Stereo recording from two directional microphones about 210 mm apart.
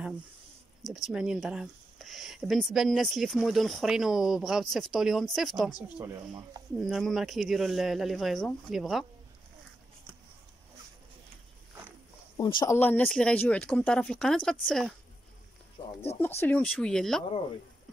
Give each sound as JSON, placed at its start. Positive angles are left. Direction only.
{"t": 1.0, "sound": "speech", "side_deg": -5}
{"t": 5.6, "sound": "speech", "side_deg": 20}
{"t": 5.9, "sound": "speech", "side_deg": -15}
{"t": 6.8, "sound": "speech", "side_deg": 0}
{"t": 12.4, "sound": "speech", "side_deg": 20}
{"t": 12.7, "sound": "speech", "side_deg": 10}
{"t": 16.3, "sound": "speech", "side_deg": 10}